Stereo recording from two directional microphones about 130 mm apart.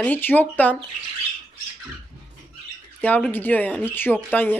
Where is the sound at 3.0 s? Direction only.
10° left (ahead or behind).